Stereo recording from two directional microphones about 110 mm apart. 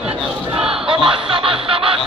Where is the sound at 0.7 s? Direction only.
50° right (ahead or behind).